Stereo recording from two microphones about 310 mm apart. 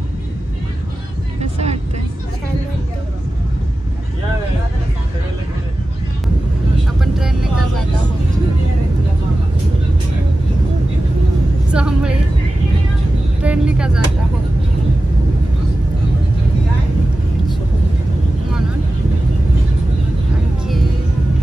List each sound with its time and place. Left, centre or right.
1.4 s vehicle: right
7.0 s vehicle: centre
11.7 s music: centre
13.4 s vehicle: centre